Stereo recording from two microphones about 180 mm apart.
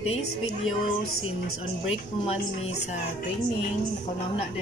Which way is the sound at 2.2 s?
35° left (ahead or behind).